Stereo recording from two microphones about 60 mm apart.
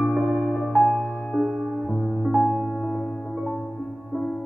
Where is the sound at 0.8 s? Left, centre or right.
Centre.